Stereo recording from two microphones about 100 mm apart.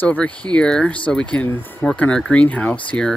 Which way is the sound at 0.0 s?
15° left (ahead or behind).